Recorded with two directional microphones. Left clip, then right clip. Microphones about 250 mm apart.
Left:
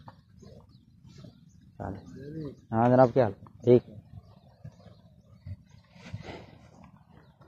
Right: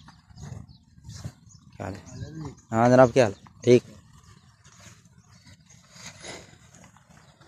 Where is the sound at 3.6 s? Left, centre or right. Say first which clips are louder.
Right 3 dB; right.